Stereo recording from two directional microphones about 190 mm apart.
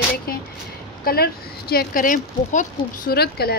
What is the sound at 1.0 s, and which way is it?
Speech, 55° left (ahead or behind).